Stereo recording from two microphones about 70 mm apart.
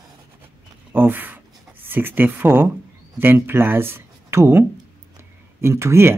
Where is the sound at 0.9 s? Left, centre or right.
Right.